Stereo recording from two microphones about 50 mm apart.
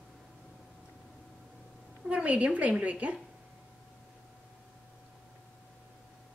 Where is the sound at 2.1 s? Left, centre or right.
Right.